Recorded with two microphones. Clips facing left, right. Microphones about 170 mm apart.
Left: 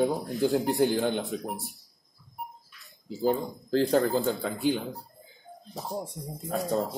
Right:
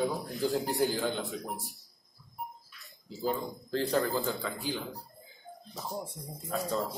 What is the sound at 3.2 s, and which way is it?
Speech, 65° left (ahead or behind).